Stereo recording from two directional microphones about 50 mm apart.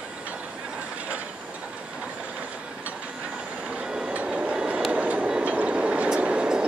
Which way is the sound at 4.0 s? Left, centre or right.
Right.